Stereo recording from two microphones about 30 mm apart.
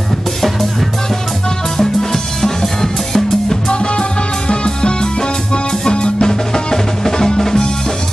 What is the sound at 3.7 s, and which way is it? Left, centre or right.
Music, left.